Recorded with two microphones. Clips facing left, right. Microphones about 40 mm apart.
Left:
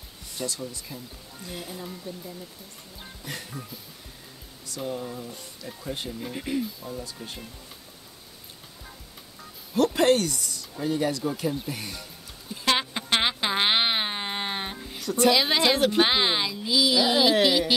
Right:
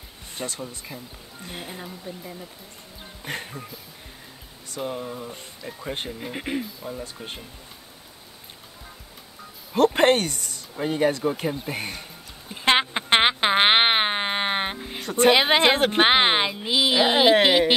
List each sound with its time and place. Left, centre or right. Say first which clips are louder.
0.3 s speech: even; right
3.3 s speech: right 5 dB; right
4.7 s speech: right 2 dB; right
9.8 s speech: right 3 dB; right
11.6 s a sound: right 4 dB; right